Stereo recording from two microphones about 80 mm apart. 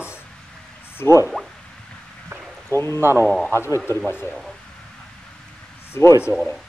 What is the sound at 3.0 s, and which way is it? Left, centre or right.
Speech, right.